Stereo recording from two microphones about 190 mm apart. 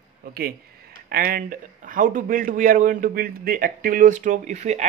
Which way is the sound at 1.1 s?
50° right (ahead or behind).